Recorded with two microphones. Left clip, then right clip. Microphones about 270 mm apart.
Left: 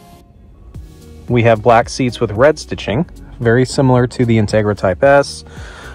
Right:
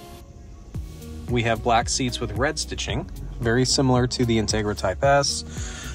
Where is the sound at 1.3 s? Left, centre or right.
Left.